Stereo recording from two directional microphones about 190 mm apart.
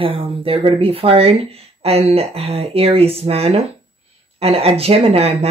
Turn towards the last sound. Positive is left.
turn(degrees=-30)  # may be behind; listen again after turning